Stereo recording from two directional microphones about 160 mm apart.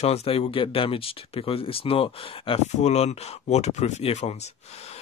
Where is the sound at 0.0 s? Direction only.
40° left (ahead or behind).